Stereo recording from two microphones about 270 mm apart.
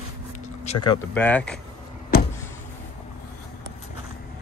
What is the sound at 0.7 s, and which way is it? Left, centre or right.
Speech, centre.